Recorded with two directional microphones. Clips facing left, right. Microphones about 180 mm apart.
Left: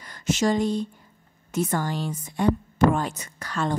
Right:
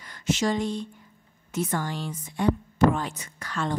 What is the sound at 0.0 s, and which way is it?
A woman's voice, 40° left (ahead or behind).